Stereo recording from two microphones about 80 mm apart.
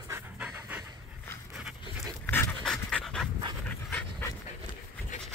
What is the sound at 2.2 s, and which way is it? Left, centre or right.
Pant, left.